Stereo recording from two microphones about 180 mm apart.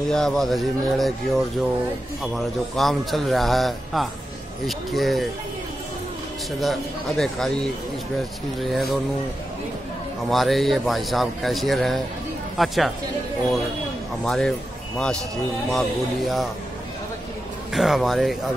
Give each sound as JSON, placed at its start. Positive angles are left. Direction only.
{"t": 0.1, "sound": "a man's voice", "side_deg": 0}
{"t": 6.6, "sound": "a man's voice", "side_deg": 0}
{"t": 10.3, "sound": "a man's voice", "side_deg": 0}
{"t": 14.2, "sound": "a man's voice", "side_deg": 5}
{"t": 15.7, "sound": "a man's voice", "side_deg": 0}
{"t": 17.7, "sound": "a man's voice", "side_deg": 0}